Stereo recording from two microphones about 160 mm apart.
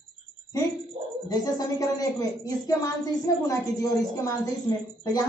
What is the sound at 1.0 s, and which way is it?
Speech, 40° right (ahead or behind).